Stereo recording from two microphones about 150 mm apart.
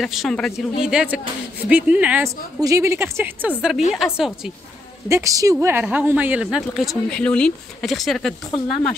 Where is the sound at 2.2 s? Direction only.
20° right (ahead or behind).